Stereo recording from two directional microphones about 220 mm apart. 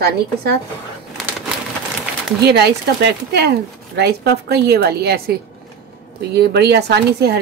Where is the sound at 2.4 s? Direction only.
50° right (ahead or behind).